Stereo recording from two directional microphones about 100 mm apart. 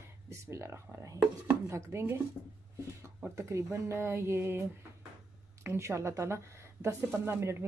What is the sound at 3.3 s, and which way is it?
Speech, 30° right (ahead or behind).